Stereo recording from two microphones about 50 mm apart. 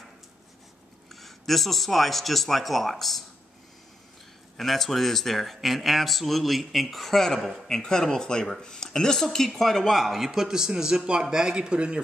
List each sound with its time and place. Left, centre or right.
1.2 s speech: centre
4.6 s a man's voice: centre; by 12.0 s right